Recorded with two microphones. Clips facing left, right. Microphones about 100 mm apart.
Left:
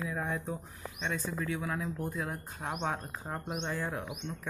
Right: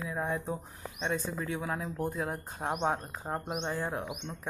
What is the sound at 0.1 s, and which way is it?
Speech, 25° right (ahead or behind).